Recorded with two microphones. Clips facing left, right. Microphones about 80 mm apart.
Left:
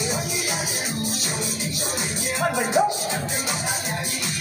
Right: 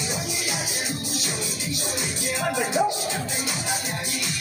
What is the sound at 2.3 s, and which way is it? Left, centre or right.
Music, left.